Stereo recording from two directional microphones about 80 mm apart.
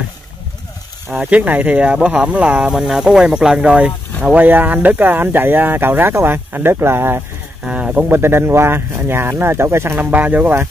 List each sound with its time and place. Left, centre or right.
1.1 s speech: centre
7.6 s speech: centre
8.2 s speech: right
9.9 s speech: right